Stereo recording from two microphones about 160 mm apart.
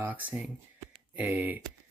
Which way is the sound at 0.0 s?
10° right (ahead or behind).